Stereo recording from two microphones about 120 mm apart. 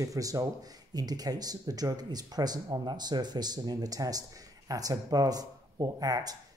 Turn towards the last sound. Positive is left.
turn(degrees=-30)  # may be behind; listen again after turning